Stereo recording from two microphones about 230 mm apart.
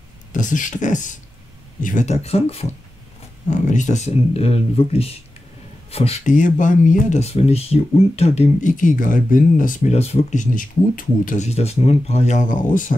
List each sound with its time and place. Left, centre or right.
0.3 s speech: left